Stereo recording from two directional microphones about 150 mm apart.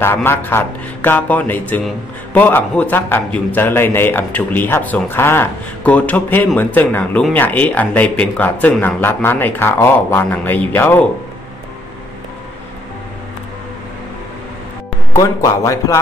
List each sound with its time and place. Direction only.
0.0 s a man's voice: 15° left (ahead or behind)
15.1 s speech: 20° left (ahead or behind)